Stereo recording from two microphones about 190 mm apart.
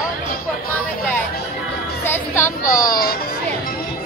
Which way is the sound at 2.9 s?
55° left (ahead or behind).